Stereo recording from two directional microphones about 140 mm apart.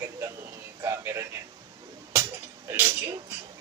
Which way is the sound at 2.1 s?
15° right (ahead or behind).